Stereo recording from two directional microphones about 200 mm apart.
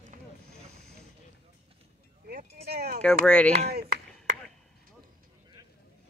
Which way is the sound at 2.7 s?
55° right (ahead or behind).